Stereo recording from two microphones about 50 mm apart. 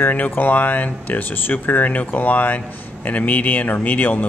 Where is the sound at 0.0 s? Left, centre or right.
Left.